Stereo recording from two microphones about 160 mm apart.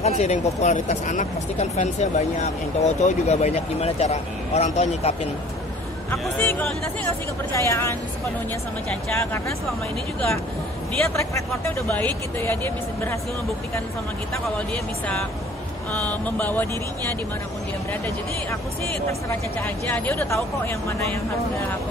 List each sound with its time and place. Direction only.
0.0 s speech: 45° left (ahead or behind)
6.4 s speech: 15° left (ahead or behind)
11.1 s speech: 15° left (ahead or behind)
14.7 s speech: 10° left (ahead or behind)
19.9 s speech: 15° left (ahead or behind)